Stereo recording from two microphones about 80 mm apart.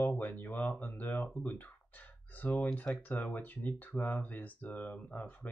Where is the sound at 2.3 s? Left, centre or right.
Centre.